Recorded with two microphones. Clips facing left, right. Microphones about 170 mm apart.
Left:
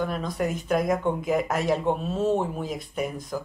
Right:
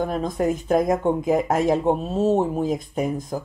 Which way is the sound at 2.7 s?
25° right (ahead or behind).